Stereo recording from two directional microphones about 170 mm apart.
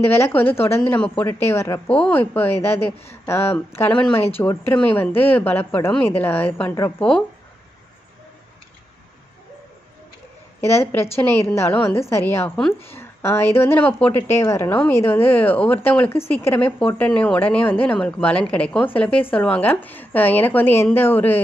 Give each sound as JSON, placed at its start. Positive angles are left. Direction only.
{"t": 0.0, "sound": "speech", "side_deg": 15}
{"t": 10.6, "sound": "speech", "side_deg": 15}